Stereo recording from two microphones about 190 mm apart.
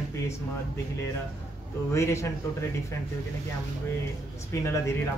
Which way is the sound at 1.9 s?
15° left (ahead or behind).